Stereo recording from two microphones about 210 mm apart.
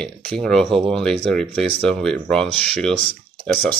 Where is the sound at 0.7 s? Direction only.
25° right (ahead or behind).